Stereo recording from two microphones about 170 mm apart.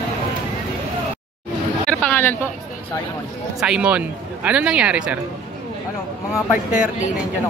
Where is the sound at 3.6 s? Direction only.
5° right (ahead or behind).